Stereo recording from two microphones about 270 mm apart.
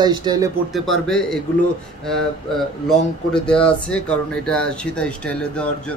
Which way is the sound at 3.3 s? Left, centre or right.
Centre.